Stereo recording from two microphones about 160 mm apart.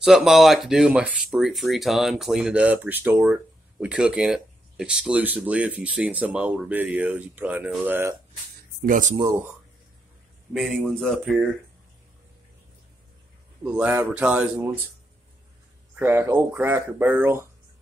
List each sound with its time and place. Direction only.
0.0 s speech: centre (ahead or behind)
8.8 s speech: 55° right (ahead or behind)
9.1 s speech: 20° right (ahead or behind)
10.5 s speech: 5° left (ahead or behind)
13.7 s speech: 10° right (ahead or behind)
16.0 s speech: 15° right (ahead or behind)